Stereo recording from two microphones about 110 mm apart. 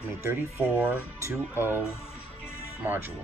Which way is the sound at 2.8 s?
20° right (ahead or behind).